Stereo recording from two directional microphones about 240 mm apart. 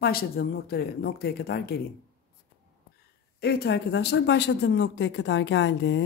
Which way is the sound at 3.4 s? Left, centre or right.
Left.